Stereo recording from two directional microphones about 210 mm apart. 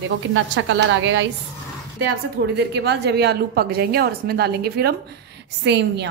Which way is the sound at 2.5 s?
55° right (ahead or behind).